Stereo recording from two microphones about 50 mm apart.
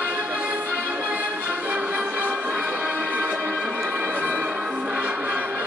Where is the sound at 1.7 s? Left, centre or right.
Right.